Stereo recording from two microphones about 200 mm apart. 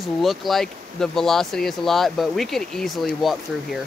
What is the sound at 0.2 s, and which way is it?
Speech, centre (ahead or behind).